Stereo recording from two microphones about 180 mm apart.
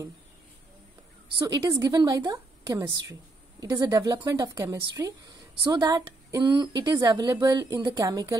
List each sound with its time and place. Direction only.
1.4 s a woman's voice: 20° right (ahead or behind)